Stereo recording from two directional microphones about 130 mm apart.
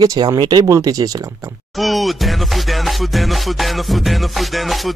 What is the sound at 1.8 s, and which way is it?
Music, centre (ahead or behind).